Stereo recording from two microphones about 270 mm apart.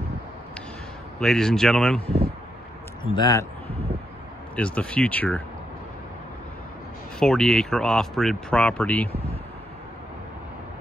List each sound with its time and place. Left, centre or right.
1.2 s speech: centre
3.2 s speech: centre
3.6 s a sound: right
4.6 s speech: centre
7.2 s speech: centre